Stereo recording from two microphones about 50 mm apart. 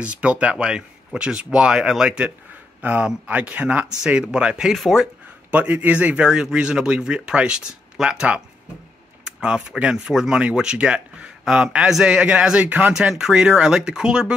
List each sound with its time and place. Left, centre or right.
0.0 s speech: right
4.7 s speech: centre
5.5 s speech: right
6.3 s speech: centre
13.2 s speech: centre